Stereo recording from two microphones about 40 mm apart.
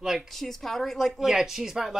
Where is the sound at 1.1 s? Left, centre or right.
Centre.